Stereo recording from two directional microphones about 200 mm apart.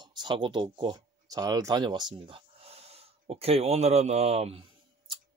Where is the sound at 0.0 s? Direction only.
20° right (ahead or behind).